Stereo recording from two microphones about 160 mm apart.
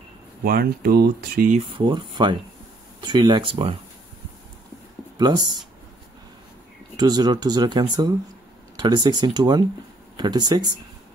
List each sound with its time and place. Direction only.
0.4 s speech: 70° right (ahead or behind)
1.8 s speech: 30° right (ahead or behind)
5.1 s speech: 25° right (ahead or behind)
7.0 s speech: 25° right (ahead or behind)